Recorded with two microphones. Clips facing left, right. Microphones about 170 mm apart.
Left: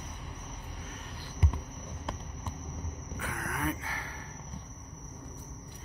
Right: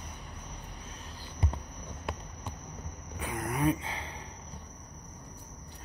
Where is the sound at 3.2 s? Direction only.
20° right (ahead or behind).